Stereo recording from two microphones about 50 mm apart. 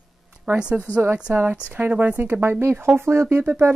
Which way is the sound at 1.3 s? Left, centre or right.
Right.